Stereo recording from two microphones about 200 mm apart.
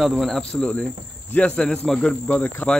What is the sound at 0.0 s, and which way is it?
Speech, centre (ahead or behind).